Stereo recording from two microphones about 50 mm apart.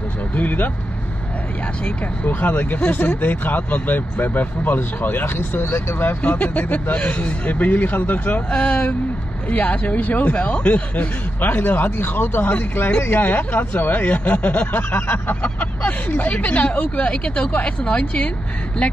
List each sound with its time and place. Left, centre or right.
0.4 s speech: left
1.9 s speech: left
11.4 s speech: left
15.4 s speech: left